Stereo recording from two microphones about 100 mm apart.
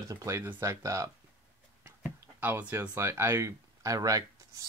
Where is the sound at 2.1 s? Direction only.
25° right (ahead or behind).